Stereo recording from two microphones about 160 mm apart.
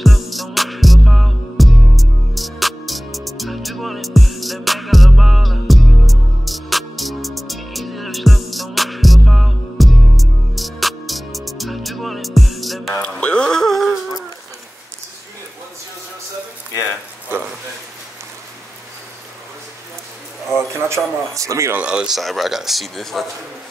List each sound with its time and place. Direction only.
0.0 s music: centre (ahead or behind)
20.7 s a sound: 20° right (ahead or behind)
21.8 s speech: 5° right (ahead or behind)